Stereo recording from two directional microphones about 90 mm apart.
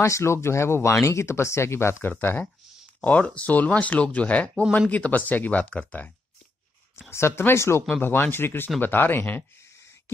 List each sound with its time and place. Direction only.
0.0 s speech: 30° left (ahead or behind)
7.1 s speech: 30° left (ahead or behind)